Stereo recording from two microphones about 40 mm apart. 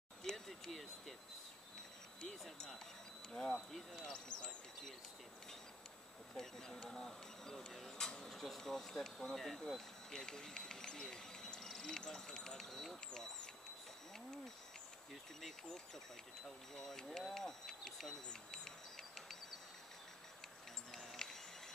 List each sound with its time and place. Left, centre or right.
0.2 s a sound: centre
3.3 s speech: centre
3.9 s basketball bounce: centre
4.3 s basketball bounce: left
6.3 s speech: centre
7.7 s a sound: centre
8.2 s speech: centre
15.4 s speech: centre
18.5 s a sound: centre
20.9 s music: centre